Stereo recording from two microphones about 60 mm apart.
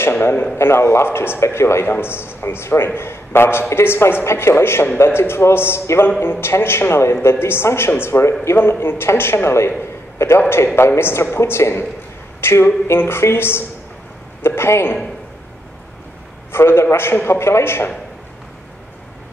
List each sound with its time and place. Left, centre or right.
0.1 s a man's voice: left
0.6 s a man's voice: left
16.5 s a man's voice: left